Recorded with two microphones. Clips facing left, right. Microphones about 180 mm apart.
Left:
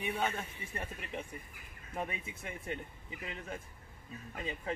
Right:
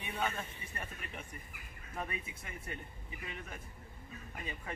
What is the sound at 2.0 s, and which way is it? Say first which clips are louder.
Speech: left 2 dB; 25° left (ahead or behind).